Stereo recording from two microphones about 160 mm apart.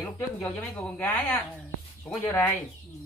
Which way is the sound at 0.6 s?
10° left (ahead or behind).